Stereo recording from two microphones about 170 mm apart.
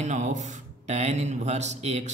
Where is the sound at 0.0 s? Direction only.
45° right (ahead or behind).